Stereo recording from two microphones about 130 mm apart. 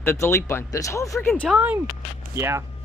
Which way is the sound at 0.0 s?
20° left (ahead or behind).